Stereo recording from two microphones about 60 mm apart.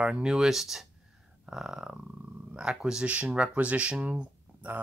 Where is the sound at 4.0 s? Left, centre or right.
Right.